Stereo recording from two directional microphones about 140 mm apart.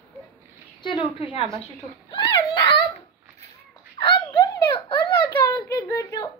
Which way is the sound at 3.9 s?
35° left (ahead or behind).